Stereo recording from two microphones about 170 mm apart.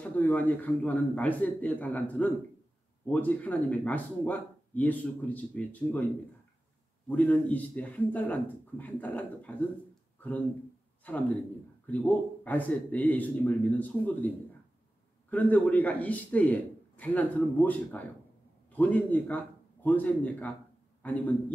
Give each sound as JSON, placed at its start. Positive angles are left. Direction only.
{"t": 0.0, "sound": "speech", "side_deg": 10}
{"t": 7.1, "sound": "a man's voice", "side_deg": 5}